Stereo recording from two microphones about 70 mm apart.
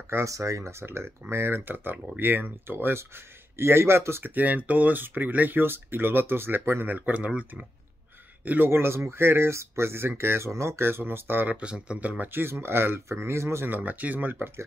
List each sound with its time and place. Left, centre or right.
0.1 s speech: right
6.9 s speech: right
8.5 s speech: right
11.5 s speech: centre; by 13.7 s right
13.7 s speech: right